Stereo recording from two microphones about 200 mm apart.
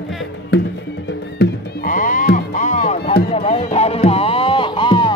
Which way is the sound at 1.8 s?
40° left (ahead or behind).